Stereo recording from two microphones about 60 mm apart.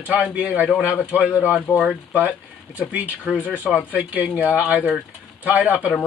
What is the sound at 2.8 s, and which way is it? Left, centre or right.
Speech, right.